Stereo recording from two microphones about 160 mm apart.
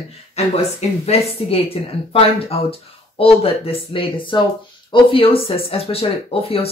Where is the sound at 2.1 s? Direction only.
35° left (ahead or behind).